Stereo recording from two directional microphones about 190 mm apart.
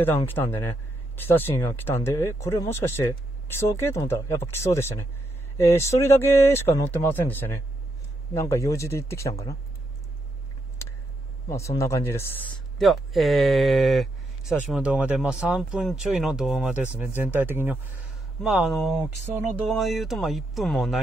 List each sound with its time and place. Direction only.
0.0 s speech: 10° left (ahead or behind)
11.4 s speech: 15° left (ahead or behind)
12.7 s speech: centre (ahead or behind)